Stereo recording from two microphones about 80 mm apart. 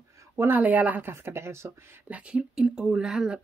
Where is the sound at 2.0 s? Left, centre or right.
Centre.